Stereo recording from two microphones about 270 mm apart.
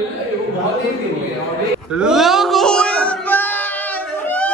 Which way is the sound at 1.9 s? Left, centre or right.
Centre.